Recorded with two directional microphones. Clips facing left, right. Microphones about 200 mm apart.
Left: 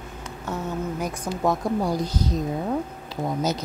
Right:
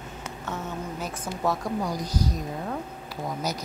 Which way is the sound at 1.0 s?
15° left (ahead or behind).